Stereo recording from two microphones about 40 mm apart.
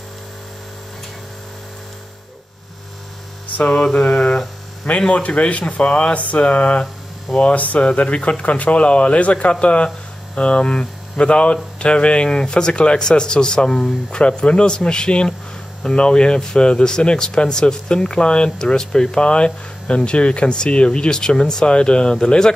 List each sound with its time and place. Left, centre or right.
3.6 s speech: left